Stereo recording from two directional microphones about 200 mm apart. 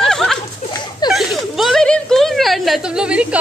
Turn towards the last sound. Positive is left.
turn(degrees=-5)  # may be behind; listen again after turning